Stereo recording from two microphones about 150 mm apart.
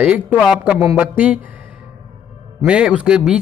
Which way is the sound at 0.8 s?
20° right (ahead or behind).